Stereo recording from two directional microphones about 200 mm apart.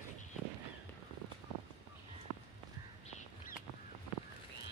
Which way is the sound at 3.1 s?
35° left (ahead or behind).